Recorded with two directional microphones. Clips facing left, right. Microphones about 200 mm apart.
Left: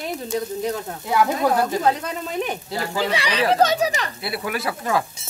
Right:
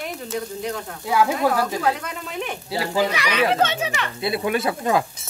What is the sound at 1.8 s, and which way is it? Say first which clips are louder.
Speech: left 2 dB; 35° left (ahead or behind).